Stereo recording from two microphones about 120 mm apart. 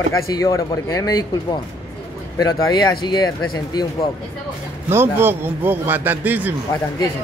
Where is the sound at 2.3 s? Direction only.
30° left (ahead or behind).